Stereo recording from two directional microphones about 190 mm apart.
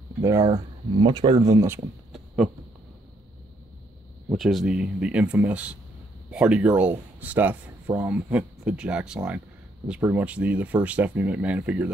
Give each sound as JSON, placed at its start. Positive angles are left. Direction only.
{"t": 0.2, "sound": "speech", "side_deg": -15}
{"t": 2.1, "sound": "a sound", "side_deg": 0}
{"t": 4.3, "sound": "speech", "side_deg": 0}